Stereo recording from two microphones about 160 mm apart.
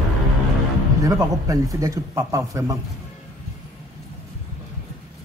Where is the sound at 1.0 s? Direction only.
20° right (ahead or behind).